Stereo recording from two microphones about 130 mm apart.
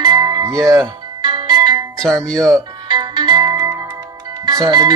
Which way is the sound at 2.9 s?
35° right (ahead or behind).